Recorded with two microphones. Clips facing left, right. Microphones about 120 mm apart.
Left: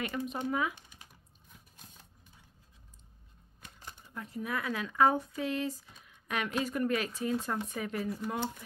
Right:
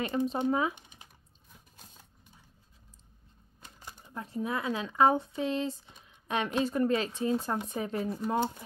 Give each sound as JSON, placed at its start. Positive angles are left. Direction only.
{"t": 0.0, "sound": "speech", "side_deg": -30}
{"t": 4.0, "sound": "speech", "side_deg": -30}